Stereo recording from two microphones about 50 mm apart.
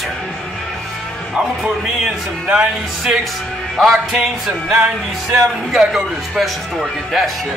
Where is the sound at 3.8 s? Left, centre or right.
Centre.